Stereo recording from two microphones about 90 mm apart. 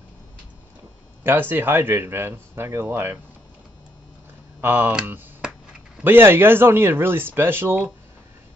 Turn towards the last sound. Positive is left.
turn(degrees=-25)  # may be behind; listen again after turning